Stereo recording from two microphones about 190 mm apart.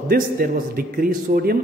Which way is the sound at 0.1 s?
50° right (ahead or behind).